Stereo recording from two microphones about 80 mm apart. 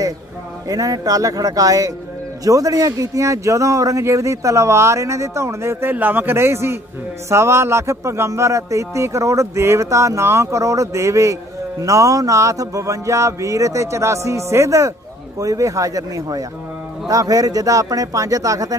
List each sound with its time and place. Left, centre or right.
0.7 s a man's voice: right